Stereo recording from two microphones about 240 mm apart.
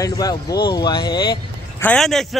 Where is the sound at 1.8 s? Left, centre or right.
Centre.